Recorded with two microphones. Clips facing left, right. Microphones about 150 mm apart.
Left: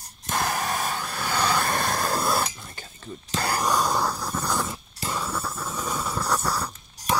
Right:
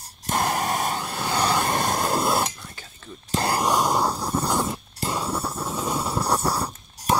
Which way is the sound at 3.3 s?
25° right (ahead or behind).